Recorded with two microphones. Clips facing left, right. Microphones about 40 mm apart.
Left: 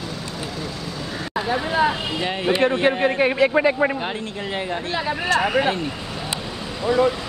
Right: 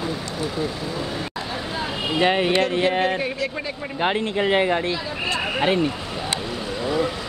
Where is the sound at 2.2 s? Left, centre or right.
Right.